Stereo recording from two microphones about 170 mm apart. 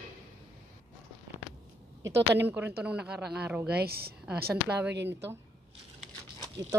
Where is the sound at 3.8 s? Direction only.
65° right (ahead or behind).